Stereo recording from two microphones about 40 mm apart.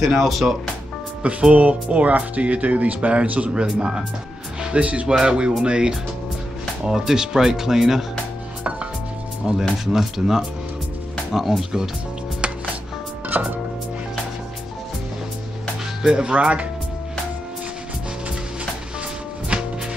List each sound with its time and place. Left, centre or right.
0.0 s speech: centre
1.5 s speech: right
3.5 s speech: right
9.5 s speech: right
9.9 s speech: centre
13.3 s music: right
16.0 s speech: centre
16.3 s speech: right
19.5 s music: right